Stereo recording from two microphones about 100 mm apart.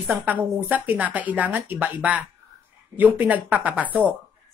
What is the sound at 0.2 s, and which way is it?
A woman's voice, 20° right (ahead or behind).